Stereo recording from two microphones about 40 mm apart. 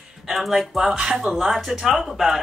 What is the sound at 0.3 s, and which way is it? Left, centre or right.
Speech, centre.